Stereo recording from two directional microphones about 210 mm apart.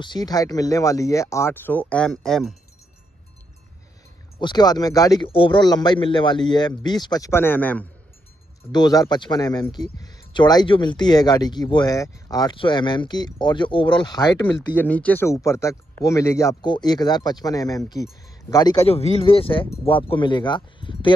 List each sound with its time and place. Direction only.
0.0 s speech: 20° left (ahead or behind); by 2.5 s centre (ahead or behind)
4.4 s speech: 20° left (ahead or behind)
18.8 s speech: 30° left (ahead or behind)